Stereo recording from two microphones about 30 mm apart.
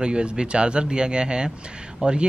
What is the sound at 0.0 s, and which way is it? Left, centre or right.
Speech, right.